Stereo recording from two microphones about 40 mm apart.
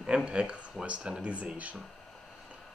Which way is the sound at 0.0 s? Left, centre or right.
Right.